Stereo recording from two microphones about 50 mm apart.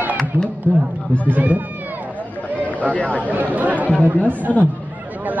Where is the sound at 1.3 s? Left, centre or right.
Right.